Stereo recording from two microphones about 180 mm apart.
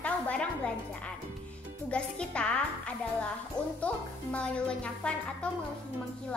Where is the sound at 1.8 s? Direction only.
5° left (ahead or behind).